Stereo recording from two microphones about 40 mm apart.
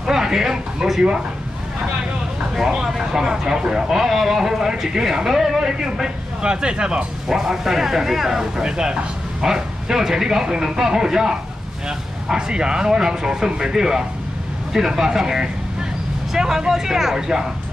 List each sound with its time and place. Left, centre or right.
0.0 s speech: centre
2.6 s speech: centre
7.2 s speech: centre